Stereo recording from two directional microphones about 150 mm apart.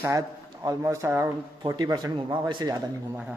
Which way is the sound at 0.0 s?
20° right (ahead or behind).